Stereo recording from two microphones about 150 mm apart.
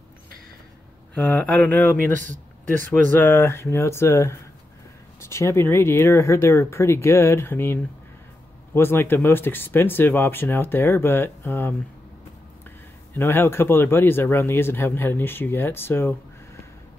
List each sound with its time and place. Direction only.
1.1 s speech: 10° left (ahead or behind)
2.1 s speech: 60° right (ahead or behind)
2.9 s speech: 15° left (ahead or behind)
13.1 s speech: 15° left (ahead or behind)